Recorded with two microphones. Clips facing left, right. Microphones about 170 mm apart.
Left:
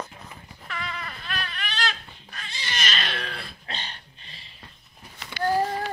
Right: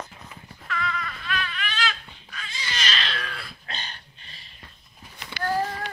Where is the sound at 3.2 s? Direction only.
30° left (ahead or behind).